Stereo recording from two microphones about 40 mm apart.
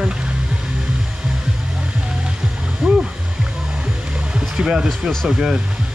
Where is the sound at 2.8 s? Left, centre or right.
Centre.